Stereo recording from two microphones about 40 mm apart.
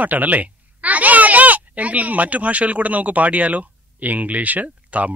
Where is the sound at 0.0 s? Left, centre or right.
Right.